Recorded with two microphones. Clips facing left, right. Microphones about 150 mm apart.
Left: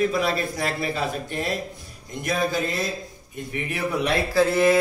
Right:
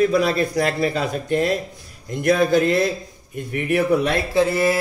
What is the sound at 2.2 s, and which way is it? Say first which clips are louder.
Speech: right 8 dB; 60° right (ahead or behind).